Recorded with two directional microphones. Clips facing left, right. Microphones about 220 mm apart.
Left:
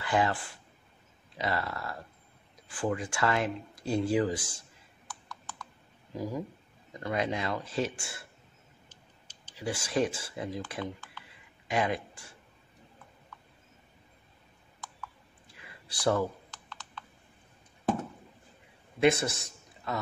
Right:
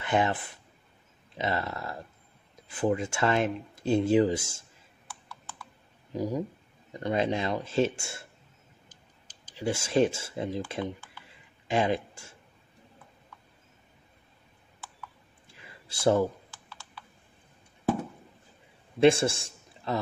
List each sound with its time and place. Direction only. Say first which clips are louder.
0.0 s speech: right 2 dB; 20° right (ahead or behind)
6.1 s speech: right 4 dB; 20° right (ahead or behind)
9.6 s speech: right 5 dB; 25° right (ahead or behind)
11.6 s a sound: right 3 dB; 25° right (ahead or behind)
15.6 s a sound: right 4 dB; 25° right (ahead or behind)
16.6 s computer keyboard: left 3 dB; 10° right (ahead or behind)
18.9 s a man's voice: right 4 dB; 30° right (ahead or behind)